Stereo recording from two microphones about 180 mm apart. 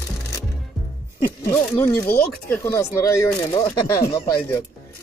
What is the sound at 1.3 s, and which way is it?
Speech, 15° left (ahead or behind).